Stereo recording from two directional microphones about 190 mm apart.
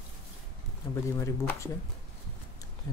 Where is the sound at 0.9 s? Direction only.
15° left (ahead or behind).